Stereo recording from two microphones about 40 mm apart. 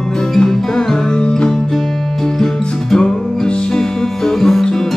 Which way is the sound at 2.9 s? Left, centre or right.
Centre.